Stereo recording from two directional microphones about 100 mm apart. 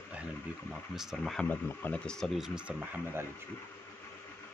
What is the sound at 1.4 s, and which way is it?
Speech, 20° left (ahead or behind).